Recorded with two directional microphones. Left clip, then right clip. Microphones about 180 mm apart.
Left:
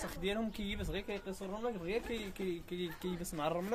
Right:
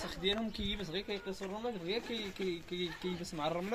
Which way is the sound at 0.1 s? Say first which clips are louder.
Right 5 dB; 5° left (ahead or behind).